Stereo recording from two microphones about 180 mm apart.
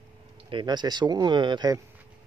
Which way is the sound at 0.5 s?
25° right (ahead or behind).